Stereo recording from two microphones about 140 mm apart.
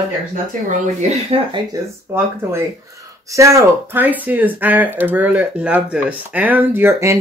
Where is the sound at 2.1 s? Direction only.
20° right (ahead or behind).